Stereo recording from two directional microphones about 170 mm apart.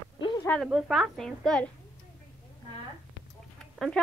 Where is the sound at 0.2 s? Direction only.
25° left (ahead or behind).